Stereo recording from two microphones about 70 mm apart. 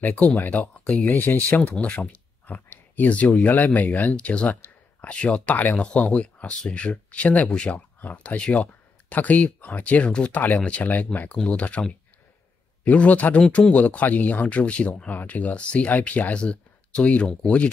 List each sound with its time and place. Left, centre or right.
0.0 s speech: left
12.8 s speech: left